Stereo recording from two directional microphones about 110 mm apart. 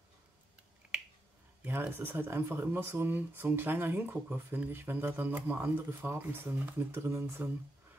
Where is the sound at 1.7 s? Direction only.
20° right (ahead or behind).